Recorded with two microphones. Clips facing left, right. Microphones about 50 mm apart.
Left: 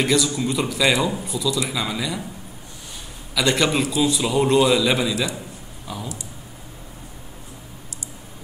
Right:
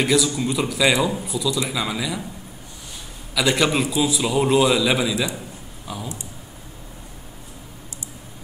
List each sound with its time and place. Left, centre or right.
0.0 s a man's voice: centre
3.3 s a man's voice: centre